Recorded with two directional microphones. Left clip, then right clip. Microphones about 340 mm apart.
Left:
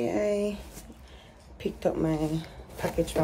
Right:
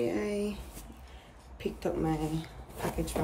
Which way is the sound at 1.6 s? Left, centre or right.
Centre.